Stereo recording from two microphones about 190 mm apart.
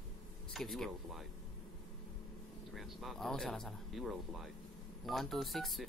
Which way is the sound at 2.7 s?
Centre (ahead or behind).